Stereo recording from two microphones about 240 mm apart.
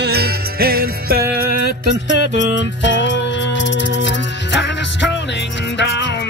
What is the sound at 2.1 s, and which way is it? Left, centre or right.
Music, left.